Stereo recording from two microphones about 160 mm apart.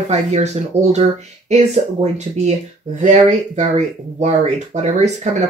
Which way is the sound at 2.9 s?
50° right (ahead or behind).